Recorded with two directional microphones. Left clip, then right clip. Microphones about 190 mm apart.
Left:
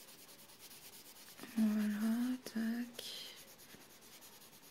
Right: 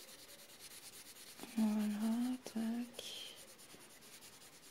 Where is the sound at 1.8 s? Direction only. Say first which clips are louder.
Left 1 dB; centre (ahead or behind).